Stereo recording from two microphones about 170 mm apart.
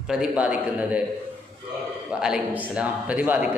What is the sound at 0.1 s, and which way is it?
Speech, 5° right (ahead or behind).